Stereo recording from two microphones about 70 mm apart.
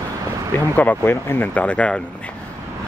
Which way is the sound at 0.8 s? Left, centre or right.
Left.